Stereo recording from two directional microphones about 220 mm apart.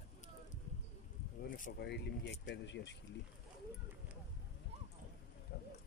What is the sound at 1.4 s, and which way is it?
Speech, 45° left (ahead or behind).